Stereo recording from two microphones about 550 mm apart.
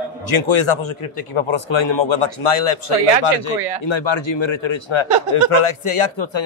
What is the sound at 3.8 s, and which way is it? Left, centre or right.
A man's voice, left.